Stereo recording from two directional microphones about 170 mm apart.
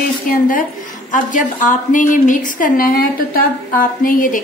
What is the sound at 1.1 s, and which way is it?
A woman's voice, 50° left (ahead or behind).